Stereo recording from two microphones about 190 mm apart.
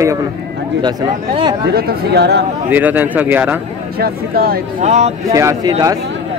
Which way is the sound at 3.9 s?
50° right (ahead or behind).